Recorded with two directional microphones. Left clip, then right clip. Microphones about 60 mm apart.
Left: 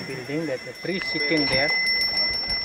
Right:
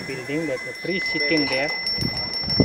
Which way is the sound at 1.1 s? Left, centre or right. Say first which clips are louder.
Right 1 dB; centre.